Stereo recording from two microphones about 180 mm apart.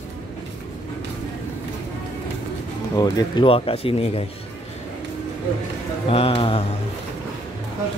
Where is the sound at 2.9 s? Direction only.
25° left (ahead or behind).